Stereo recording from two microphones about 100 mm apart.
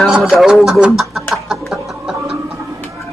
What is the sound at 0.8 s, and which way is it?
Chuckle, centre (ahead or behind).